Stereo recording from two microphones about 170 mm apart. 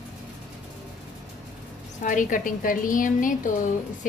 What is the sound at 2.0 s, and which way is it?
A woman's voice, 50° left (ahead or behind).